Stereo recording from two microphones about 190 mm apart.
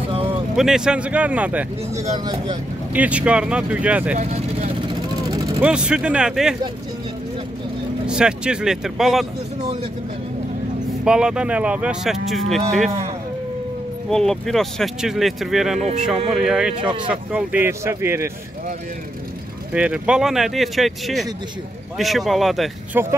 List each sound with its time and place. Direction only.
0.1 s vehicle: 30° right (ahead or behind)
0.6 s speech: 5° right (ahead or behind)
2.1 s speech: 20° right (ahead or behind)
2.9 s speech: 5° right (ahead or behind)
4.2 s vehicle: 35° right (ahead or behind)
5.6 s speech: 5° right (ahead or behind)
8.1 s speech: 5° right (ahead or behind)
11.1 s speech: 5° right (ahead or behind)
14.1 s speech: 5° left (ahead or behind)
19.7 s speech: 5° right (ahead or behind)
23.0 s speech: 10° right (ahead or behind)